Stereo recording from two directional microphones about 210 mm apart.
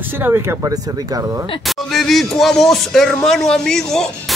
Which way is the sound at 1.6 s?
Centre (ahead or behind).